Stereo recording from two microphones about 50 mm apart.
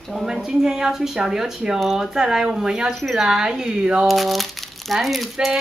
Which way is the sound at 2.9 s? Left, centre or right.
Centre.